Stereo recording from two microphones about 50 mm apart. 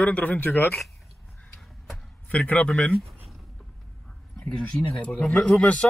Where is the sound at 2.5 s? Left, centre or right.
Left.